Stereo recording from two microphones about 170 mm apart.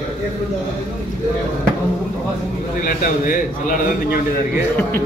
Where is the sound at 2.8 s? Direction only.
55° left (ahead or behind).